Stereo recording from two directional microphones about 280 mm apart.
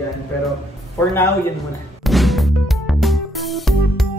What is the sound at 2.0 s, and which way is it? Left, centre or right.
Music, centre.